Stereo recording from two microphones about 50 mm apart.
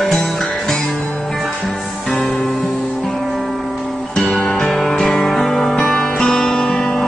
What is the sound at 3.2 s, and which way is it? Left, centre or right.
Music, centre.